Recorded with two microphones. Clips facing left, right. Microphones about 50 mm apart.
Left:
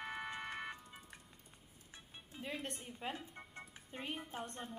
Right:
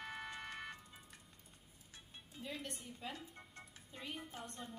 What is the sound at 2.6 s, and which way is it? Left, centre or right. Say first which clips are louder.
A woman's voice: left 3 dB; left.